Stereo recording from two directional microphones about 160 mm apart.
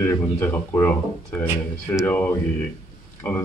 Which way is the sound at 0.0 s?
15° left (ahead or behind).